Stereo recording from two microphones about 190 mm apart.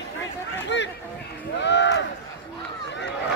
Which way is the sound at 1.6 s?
65° left (ahead or behind).